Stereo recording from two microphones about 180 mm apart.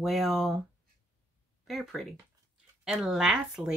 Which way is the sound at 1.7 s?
Centre (ahead or behind).